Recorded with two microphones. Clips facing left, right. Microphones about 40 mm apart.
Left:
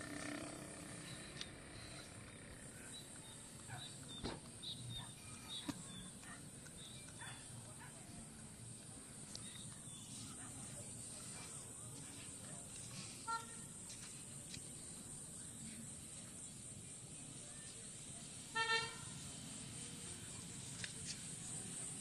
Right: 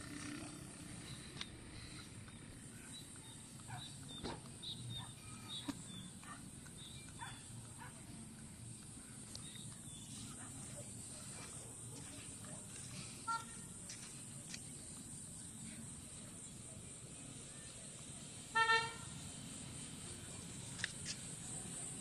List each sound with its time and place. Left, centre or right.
0.0 s wild animals: left
13.3 s vehicle: right
18.5 s toot: right
20.7 s a sound: right